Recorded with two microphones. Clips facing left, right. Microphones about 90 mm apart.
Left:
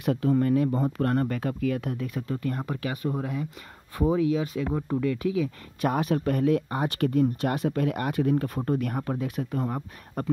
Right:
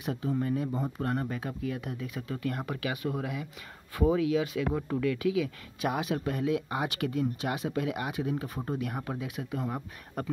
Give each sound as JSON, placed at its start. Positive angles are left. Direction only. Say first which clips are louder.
{"t": 0.0, "sound": "speech", "louder": "left 7 dB", "side_deg": 60}